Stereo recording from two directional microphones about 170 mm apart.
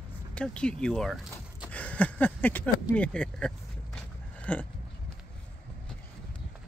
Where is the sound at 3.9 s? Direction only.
10° left (ahead or behind).